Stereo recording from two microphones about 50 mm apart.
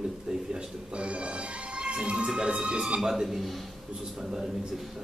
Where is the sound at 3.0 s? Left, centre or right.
Centre.